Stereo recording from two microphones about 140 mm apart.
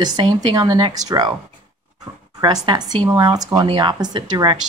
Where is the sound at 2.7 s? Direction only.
30° right (ahead or behind).